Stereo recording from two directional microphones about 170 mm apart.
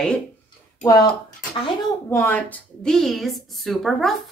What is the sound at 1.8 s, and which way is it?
A woman's voice, 15° left (ahead or behind).